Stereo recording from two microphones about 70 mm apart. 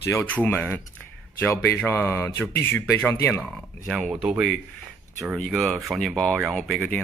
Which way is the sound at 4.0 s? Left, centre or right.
Centre.